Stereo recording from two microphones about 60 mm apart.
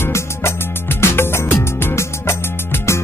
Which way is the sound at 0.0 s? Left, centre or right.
Left.